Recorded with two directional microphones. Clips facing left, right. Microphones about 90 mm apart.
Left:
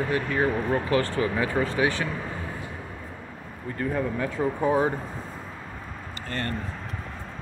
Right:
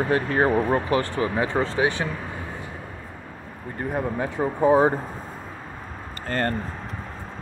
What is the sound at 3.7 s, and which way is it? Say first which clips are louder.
Speech: right 1 dB; 30° right (ahead or behind).